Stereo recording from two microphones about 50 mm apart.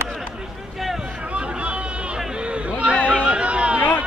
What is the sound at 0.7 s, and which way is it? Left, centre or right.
Boat, centre.